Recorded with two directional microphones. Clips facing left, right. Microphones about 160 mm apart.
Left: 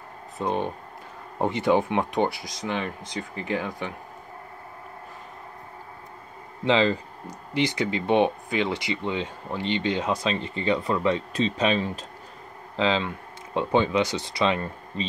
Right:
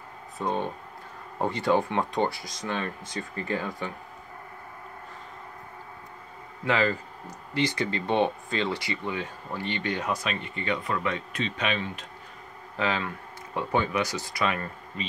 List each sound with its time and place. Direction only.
0.4 s speech: 20° left (ahead or behind)
6.6 s speech: 20° left (ahead or behind)
12.7 s speech: 20° left (ahead or behind)